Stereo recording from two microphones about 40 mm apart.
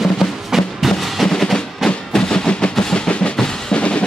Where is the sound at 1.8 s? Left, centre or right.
Centre.